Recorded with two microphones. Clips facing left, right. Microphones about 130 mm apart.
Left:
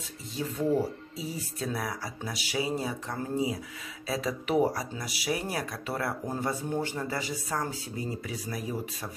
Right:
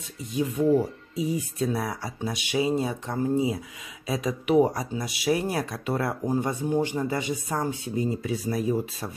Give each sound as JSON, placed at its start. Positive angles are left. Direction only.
{"t": 0.3, "sound": "speech", "side_deg": -15}